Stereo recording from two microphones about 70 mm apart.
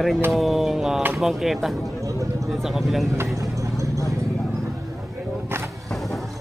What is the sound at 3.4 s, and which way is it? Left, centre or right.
Vehicle, right.